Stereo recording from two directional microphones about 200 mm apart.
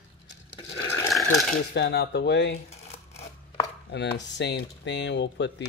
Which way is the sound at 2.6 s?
30° left (ahead or behind).